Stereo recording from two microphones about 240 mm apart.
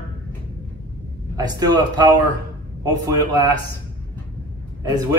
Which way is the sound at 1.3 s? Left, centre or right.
Centre.